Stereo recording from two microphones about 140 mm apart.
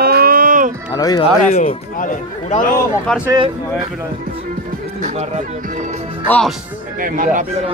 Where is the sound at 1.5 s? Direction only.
65° left (ahead or behind).